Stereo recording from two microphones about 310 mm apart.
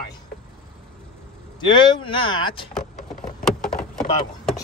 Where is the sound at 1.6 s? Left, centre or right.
Centre.